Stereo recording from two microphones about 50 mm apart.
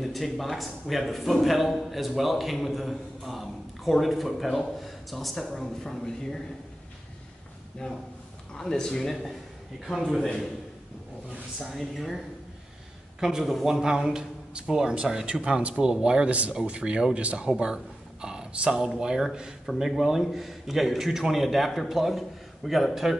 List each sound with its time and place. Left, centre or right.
0.0 s a man's voice: centre
7.8 s a man's voice: centre
11.6 s a man's voice: centre
13.2 s a man's voice: centre